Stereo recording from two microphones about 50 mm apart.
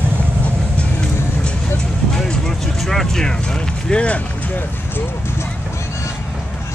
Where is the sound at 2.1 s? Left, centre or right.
Centre.